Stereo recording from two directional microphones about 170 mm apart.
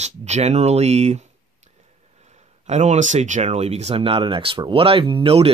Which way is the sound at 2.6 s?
40° right (ahead or behind).